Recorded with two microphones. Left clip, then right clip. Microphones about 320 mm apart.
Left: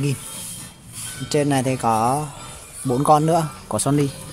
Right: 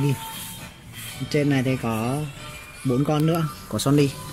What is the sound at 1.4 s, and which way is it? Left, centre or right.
Speech, left.